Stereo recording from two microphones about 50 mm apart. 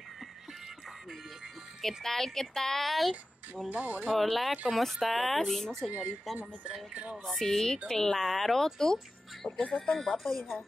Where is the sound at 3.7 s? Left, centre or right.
Right.